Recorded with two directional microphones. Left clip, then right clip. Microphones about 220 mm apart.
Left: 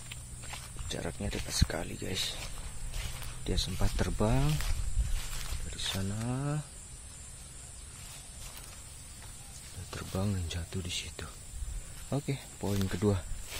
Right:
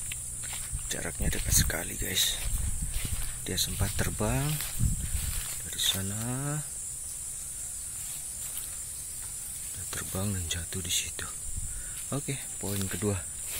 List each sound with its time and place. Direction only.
0.1 s speech: 5° left (ahead or behind)
3.4 s speech: centre (ahead or behind)
5.3 s a sound: 5° left (ahead or behind)
9.8 s speech: centre (ahead or behind)